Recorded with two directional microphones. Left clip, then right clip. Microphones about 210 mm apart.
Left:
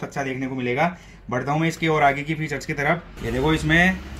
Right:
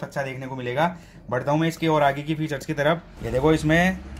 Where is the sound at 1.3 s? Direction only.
30° right (ahead or behind).